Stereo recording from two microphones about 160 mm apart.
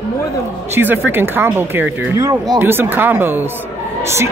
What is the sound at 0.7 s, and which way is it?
Speech, 10° right (ahead or behind).